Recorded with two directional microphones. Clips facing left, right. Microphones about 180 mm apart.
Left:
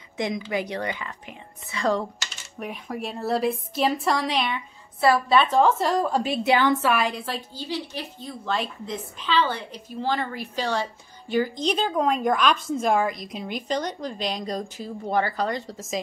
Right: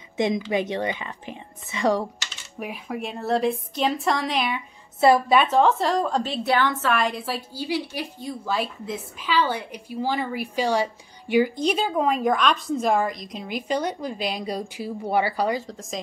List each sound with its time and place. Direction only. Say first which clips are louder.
0.2 s speech: right 4 dB; 25° right (ahead or behind)
2.6 s a woman's voice: right 1 dB; 5° right (ahead or behind)
5.0 s a woman's voice: right 2 dB; 15° right (ahead or behind)
5.6 s a woman's voice: even; centre (ahead or behind)
7.0 s a woman's voice: right 1 dB; centre (ahead or behind)